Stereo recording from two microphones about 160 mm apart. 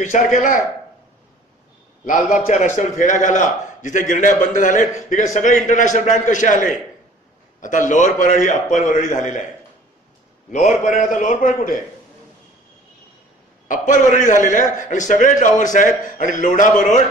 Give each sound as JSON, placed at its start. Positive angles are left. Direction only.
{"t": 0.0, "sound": "a man's voice", "side_deg": 55}
{"t": 2.0, "sound": "a man's voice", "side_deg": 55}
{"t": 10.5, "sound": "a man's voice", "side_deg": 50}
{"t": 13.7, "sound": "a man's voice", "side_deg": 55}